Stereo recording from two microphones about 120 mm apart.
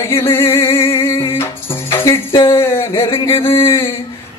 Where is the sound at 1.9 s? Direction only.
20° left (ahead or behind).